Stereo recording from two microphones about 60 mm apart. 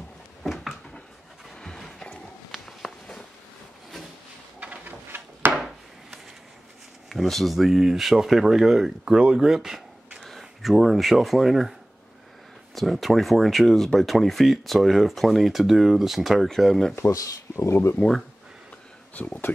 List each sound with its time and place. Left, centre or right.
0.4 s a sound: centre
2.5 s walk: centre
4.6 s a sound: right
5.1 s drawer open or close: right
5.6 s wood: centre
7.1 s speech: centre
12.7 s speech: centre
17.1 s speech: left
18.0 s speech: left